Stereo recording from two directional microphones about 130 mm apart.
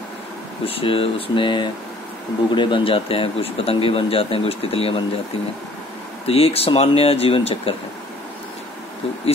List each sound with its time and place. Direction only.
0.7 s speech: 45° left (ahead or behind)
6.2 s speech: 50° left (ahead or behind)